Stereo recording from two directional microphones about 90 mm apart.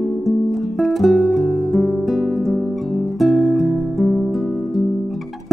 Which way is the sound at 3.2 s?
5° left (ahead or behind).